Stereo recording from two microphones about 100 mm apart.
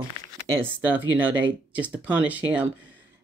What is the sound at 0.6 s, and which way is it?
Speech, 15° right (ahead or behind).